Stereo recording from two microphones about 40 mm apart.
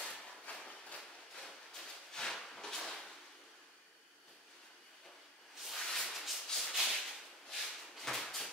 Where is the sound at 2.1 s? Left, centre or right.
Centre.